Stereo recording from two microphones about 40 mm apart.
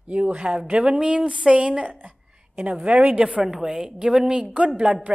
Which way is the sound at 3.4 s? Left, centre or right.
Centre.